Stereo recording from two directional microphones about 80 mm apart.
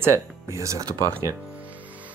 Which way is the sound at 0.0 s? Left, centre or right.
Right.